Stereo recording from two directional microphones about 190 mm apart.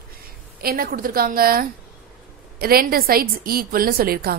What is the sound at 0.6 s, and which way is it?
A woman's voice, 55° right (ahead or behind).